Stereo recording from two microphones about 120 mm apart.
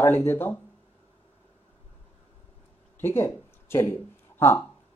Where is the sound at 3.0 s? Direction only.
20° left (ahead or behind).